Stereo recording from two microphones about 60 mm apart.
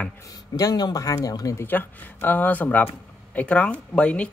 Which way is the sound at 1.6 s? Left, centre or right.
Left.